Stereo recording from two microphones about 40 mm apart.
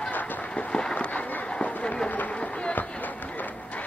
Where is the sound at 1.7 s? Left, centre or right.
Left.